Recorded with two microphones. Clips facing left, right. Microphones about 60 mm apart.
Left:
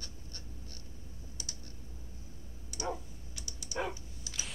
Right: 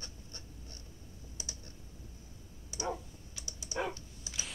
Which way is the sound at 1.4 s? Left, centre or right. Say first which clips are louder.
Right 1 dB; right.